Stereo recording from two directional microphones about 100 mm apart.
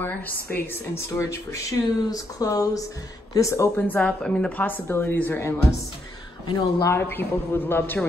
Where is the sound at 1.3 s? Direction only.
30° left (ahead or behind).